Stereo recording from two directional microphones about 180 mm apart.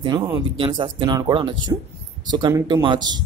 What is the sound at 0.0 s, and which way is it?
Speech, 25° right (ahead or behind).